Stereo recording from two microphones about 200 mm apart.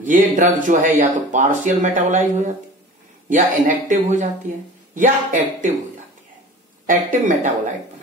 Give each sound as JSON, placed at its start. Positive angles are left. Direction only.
{"t": 0.0, "sound": "speech", "side_deg": -40}
{"t": 6.9, "sound": "speech", "side_deg": -40}